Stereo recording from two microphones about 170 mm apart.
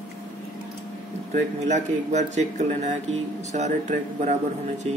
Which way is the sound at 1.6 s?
45° right (ahead or behind).